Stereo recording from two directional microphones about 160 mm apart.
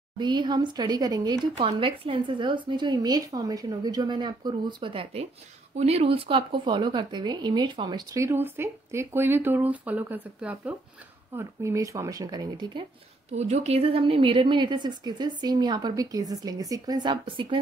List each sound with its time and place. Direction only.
0.2 s speech: 30° right (ahead or behind)
13.3 s speech: 45° right (ahead or behind)